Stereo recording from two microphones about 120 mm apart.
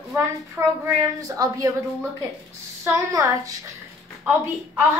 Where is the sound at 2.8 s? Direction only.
25° right (ahead or behind).